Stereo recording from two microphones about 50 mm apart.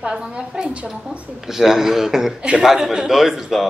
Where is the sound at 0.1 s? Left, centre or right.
Centre.